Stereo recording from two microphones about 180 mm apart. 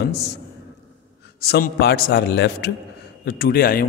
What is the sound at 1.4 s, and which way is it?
A man's voice, 60° left (ahead or behind).